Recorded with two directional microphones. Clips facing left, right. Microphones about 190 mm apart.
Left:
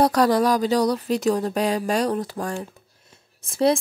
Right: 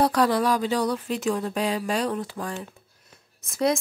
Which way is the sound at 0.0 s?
40° left (ahead or behind).